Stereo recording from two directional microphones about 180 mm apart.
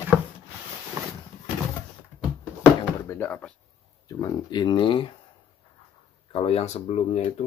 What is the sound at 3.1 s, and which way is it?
Drawer open or close, 10° left (ahead or behind).